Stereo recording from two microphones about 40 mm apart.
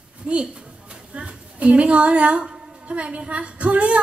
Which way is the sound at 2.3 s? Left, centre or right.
Centre.